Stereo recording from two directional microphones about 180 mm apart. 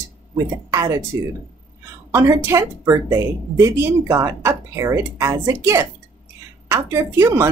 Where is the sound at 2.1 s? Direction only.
15° right (ahead or behind).